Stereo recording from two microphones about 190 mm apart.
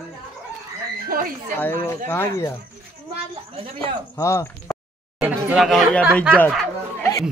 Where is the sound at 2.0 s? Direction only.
15° left (ahead or behind).